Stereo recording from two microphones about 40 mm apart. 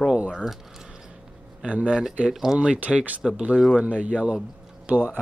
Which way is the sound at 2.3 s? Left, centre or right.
Centre.